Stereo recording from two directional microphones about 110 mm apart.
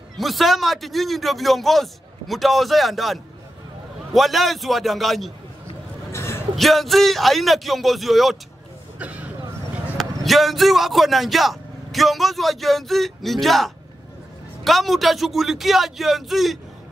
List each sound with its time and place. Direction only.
0.2 s a man's voice: centre (ahead or behind)
6.1 s a sound: 25° left (ahead or behind)
6.5 s a man's voice: centre (ahead or behind)
9.0 s vehicle: 15° right (ahead or behind)
9.9 s a man's voice: centre (ahead or behind)